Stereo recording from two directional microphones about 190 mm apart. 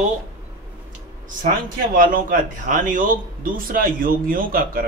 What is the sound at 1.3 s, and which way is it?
Speech, 45° right (ahead or behind).